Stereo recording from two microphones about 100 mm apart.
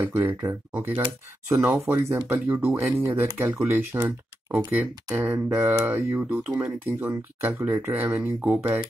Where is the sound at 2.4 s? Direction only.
15° right (ahead or behind).